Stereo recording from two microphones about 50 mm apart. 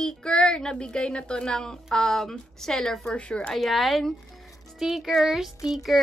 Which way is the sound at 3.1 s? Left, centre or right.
Left.